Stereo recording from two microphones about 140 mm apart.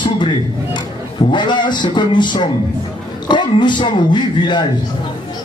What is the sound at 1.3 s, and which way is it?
Music, 35° left (ahead or behind).